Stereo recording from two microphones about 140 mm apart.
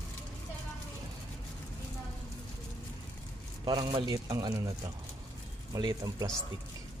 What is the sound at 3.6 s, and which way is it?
Speech, 30° right (ahead or behind).